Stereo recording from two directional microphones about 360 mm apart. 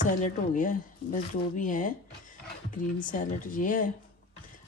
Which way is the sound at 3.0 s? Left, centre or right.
Left.